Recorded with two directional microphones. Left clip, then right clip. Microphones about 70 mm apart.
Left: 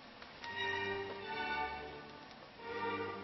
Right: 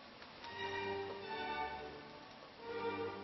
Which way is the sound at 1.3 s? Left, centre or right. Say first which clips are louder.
Left 3 dB; left.